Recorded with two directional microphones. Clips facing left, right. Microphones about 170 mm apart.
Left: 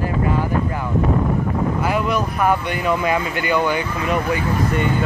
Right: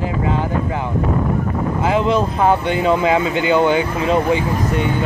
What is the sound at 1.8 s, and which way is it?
Speech, 25° right (ahead or behind).